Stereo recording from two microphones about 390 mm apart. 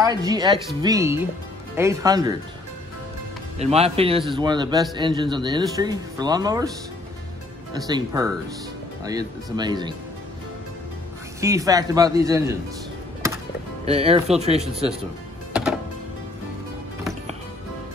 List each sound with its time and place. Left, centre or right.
0.0 s speech: centre
3.5 s speech: centre
7.7 s speech: centre
11.4 s speech: centre
13.8 s speech: centre